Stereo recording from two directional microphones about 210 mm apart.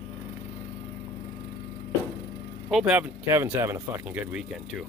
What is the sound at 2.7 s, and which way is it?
Speech, 5° right (ahead or behind).